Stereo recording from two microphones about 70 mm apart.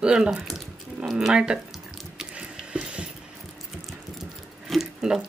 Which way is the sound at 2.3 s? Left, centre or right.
Centre.